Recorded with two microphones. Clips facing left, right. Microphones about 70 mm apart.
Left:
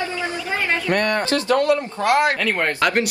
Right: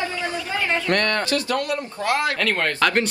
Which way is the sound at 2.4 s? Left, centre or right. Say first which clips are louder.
Left 1 dB; centre.